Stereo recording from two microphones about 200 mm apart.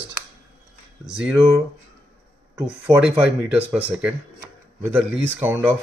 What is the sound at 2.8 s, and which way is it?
Speech, 10° right (ahead or behind).